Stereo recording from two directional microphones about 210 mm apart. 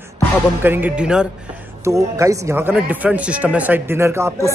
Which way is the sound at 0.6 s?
10° right (ahead or behind).